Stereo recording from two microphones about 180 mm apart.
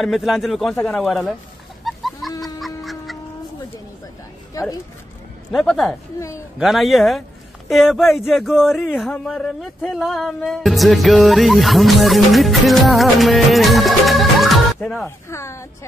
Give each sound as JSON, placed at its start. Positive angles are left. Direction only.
{"t": 0.0, "sound": "speech", "side_deg": 0}
{"t": 1.9, "sound": "goose", "side_deg": 0}
{"t": 2.4, "sound": "fowl", "side_deg": 0}
{"t": 4.6, "sound": "a sound", "side_deg": 20}
{"t": 5.5, "sound": "speech", "side_deg": 0}
{"t": 6.1, "sound": "a woman's voice", "side_deg": 15}
{"t": 6.6, "sound": "speech", "side_deg": 0}
{"t": 15.0, "sound": "a woman's voice", "side_deg": 15}